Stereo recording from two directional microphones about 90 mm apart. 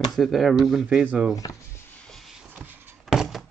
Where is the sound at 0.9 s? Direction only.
15° right (ahead or behind).